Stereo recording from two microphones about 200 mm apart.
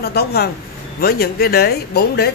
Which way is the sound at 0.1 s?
50° left (ahead or behind).